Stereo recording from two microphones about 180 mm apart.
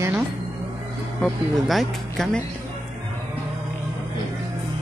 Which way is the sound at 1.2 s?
Centre (ahead or behind).